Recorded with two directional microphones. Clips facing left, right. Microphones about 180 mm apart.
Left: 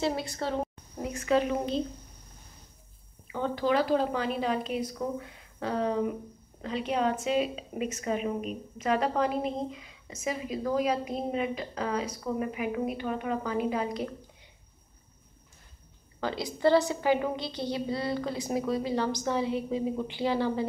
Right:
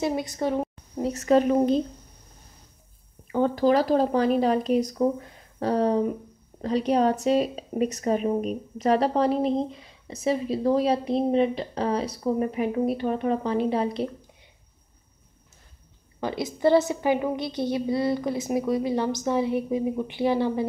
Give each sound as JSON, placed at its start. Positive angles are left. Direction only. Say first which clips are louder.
{"t": 0.0, "sound": "a woman's voice", "louder": "right 4 dB", "side_deg": -20}
{"t": 1.0, "sound": "a woman's voice", "louder": "right 6 dB", "side_deg": -40}
{"t": 3.3, "sound": "a woman's voice", "louder": "right 7 dB", "side_deg": -45}
{"t": 16.2, "sound": "a woman's voice", "louder": "right 3 dB", "side_deg": -20}